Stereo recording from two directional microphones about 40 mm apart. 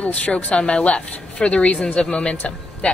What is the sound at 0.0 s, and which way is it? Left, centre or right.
A woman's voice, left.